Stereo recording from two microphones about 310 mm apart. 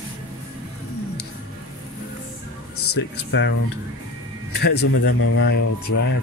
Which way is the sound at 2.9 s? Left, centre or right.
Left.